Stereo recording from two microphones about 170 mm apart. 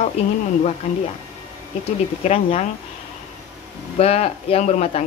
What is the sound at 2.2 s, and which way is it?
Speech, 35° left (ahead or behind).